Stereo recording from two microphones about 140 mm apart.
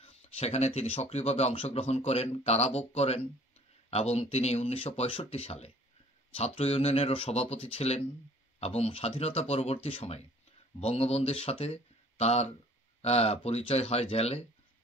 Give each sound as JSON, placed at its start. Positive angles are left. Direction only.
{"t": 0.0, "sound": "speech", "side_deg": 45}